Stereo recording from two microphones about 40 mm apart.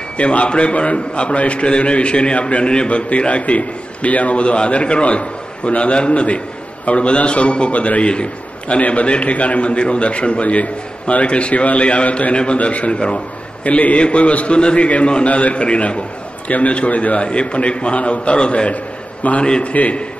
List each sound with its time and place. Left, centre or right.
0.2 s a man's voice: left
13.7 s a man's voice: left
19.2 s a man's voice: left